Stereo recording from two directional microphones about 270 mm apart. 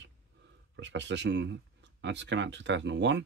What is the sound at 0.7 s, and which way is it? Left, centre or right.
Speech, right.